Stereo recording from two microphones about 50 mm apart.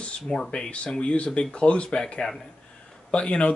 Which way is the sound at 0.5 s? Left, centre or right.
Left.